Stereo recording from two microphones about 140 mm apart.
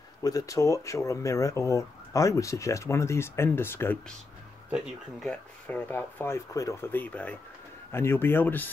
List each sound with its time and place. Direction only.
0.2 s speech: 25° left (ahead or behind)
4.6 s speech: 5° right (ahead or behind)
5.3 s speech: 10° left (ahead or behind)